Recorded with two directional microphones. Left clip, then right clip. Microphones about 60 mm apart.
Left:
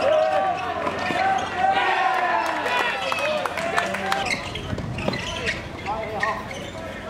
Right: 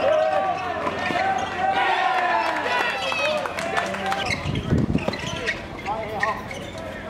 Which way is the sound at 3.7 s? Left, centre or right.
Left.